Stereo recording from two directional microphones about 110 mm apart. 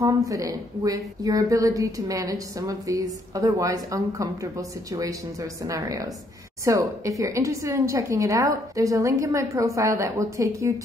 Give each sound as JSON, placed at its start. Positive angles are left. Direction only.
{"t": 0.0, "sound": "a woman's voice", "side_deg": -30}